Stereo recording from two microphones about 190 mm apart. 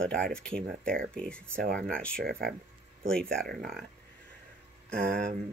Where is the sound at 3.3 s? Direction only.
50° right (ahead or behind).